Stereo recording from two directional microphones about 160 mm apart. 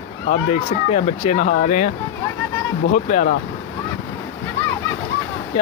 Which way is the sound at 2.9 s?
55° left (ahead or behind).